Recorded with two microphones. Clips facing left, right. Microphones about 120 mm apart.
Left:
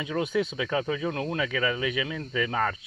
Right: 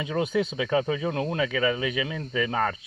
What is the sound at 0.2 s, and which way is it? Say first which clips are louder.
Speech: right 2 dB; centre (ahead or behind).